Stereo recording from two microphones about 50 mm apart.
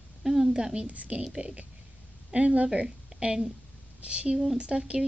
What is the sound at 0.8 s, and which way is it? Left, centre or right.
A woman's voice, right.